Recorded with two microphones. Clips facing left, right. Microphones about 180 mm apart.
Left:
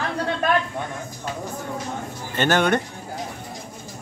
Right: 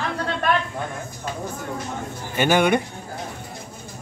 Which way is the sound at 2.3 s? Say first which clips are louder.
Right 1 dB; 10° right (ahead or behind).